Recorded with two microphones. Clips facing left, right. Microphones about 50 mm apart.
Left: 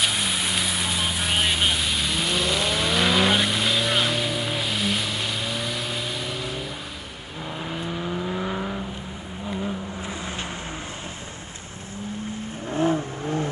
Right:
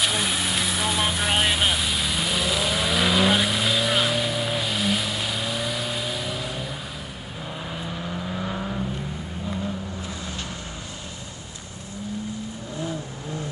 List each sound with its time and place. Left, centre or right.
0.0 s vehicle: centre
7.7 s vehicle: centre
12.7 s vehicle: left